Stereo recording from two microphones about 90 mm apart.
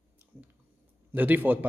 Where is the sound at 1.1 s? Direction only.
20° right (ahead or behind).